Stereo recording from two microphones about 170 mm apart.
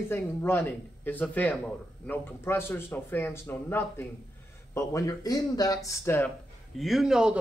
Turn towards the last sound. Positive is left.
turn(degrees=-5)  # may be behind; listen again after turning